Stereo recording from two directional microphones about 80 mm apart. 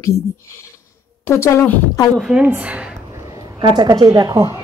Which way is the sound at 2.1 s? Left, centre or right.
Centre.